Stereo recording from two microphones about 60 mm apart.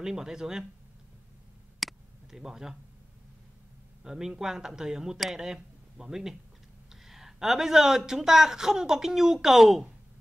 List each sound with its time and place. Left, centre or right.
0.0 s a man's voice: centre
1.8 s a sound: centre
4.0 s a man's voice: centre